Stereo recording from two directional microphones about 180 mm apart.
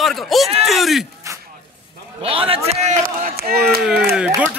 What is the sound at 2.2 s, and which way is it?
Speech, 30° right (ahead or behind).